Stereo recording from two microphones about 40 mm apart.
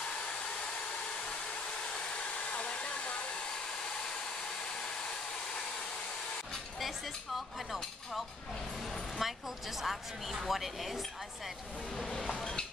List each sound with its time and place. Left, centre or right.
2.5 s hair dryer: left
7.3 s a woman's voice: centre
12.2 s a sound: centre